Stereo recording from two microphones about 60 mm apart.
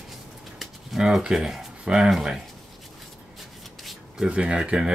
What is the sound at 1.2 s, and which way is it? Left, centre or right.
Speech, centre.